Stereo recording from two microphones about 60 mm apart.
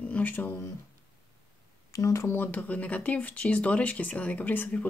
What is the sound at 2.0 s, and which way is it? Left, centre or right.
Speech, left.